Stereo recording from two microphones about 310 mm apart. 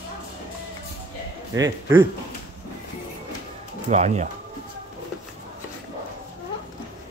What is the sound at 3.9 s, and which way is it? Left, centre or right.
Speech, right.